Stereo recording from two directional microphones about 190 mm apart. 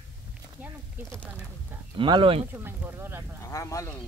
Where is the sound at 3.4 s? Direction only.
15° left (ahead or behind).